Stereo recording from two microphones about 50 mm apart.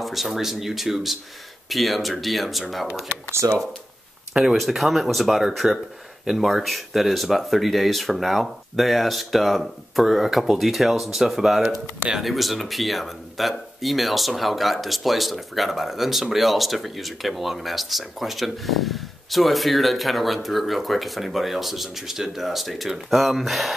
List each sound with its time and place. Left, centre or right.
0.0 s speech: centre
3.3 s speech: right
4.3 s speech: centre
5.6 s speech: centre
6.2 s speech: centre